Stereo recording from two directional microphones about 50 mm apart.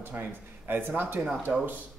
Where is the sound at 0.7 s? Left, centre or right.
Right.